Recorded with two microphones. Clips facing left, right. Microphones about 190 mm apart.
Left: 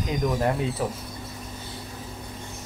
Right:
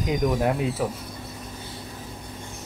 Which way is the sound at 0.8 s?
5° right (ahead or behind).